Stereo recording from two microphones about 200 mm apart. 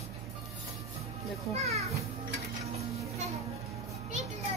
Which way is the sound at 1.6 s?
30° right (ahead or behind).